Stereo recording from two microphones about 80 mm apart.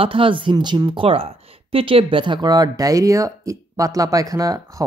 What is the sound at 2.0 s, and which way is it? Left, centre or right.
Speech, right.